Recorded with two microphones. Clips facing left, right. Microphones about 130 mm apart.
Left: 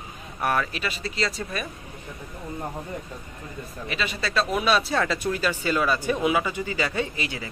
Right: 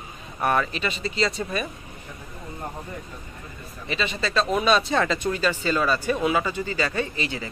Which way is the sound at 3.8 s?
5° left (ahead or behind).